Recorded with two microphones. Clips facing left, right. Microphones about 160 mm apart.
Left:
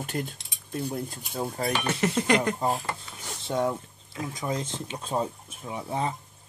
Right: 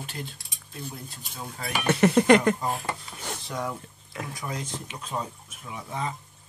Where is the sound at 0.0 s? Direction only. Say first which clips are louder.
Left 6 dB; 50° left (ahead or behind).